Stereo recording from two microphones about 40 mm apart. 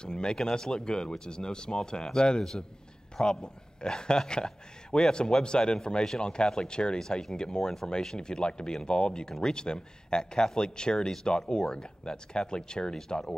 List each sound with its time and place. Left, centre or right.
0.0 s speech: left